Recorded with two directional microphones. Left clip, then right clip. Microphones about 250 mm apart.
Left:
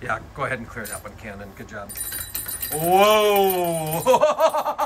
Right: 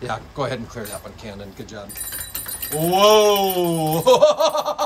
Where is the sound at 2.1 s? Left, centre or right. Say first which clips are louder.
Right 1 dB; centre.